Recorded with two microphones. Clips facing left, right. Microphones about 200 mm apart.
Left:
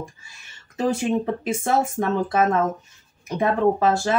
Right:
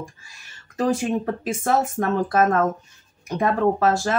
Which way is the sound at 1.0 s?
Centre (ahead or behind).